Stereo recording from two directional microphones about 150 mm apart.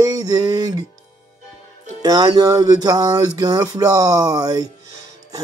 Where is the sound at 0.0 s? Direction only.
25° right (ahead or behind).